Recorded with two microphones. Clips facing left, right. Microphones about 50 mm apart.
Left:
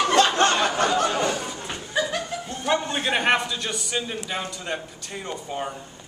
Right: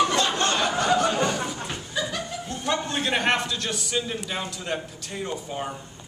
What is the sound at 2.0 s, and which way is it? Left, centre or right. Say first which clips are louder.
Chuckle: left 4 dB; left.